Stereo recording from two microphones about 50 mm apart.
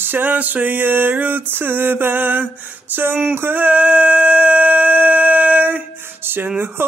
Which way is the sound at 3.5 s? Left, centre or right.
Right.